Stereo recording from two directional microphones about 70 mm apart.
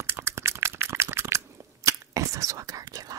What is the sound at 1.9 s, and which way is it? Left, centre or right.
Whispering, right.